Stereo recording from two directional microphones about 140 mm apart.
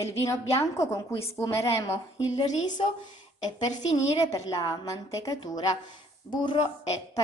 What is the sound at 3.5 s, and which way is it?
A woman's voice, 30° left (ahead or behind).